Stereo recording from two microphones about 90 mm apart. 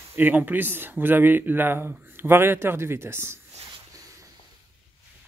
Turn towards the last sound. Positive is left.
turn(degrees=-25)  # may be behind; listen again after turning